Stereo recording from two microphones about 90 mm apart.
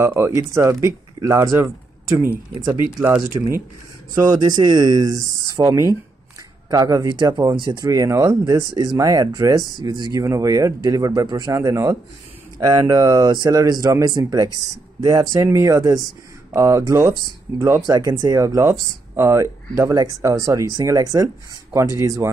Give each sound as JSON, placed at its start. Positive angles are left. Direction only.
{"t": 0.0, "sound": "speech", "side_deg": -30}
{"t": 3.3, "sound": "speech", "side_deg": -50}
{"t": 22.2, "sound": "speech", "side_deg": -30}